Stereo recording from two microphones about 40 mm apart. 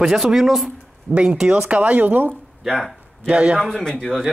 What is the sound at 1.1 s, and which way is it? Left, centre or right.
Speech, right.